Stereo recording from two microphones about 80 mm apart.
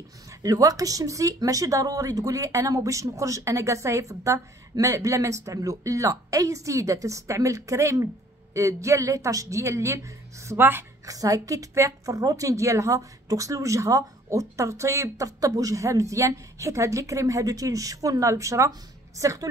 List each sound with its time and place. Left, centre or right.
0.3 s a woman's voice: right
11.1 s a woman's voice: right